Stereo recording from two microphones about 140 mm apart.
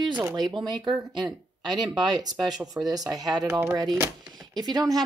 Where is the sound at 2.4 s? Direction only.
Centre (ahead or behind).